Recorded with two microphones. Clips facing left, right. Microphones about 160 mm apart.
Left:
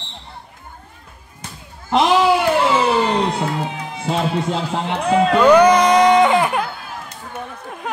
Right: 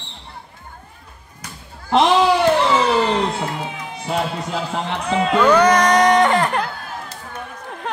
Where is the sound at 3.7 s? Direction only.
30° left (ahead or behind).